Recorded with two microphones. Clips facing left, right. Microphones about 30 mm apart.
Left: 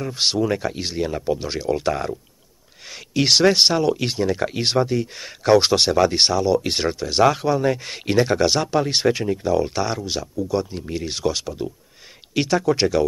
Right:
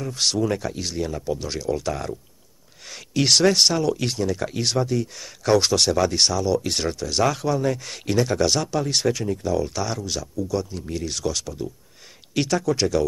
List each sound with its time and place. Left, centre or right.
0.0 s speech: left